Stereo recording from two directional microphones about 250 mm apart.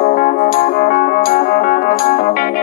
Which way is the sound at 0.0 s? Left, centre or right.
Left.